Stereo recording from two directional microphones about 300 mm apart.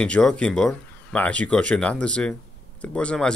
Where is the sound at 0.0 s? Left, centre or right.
Centre.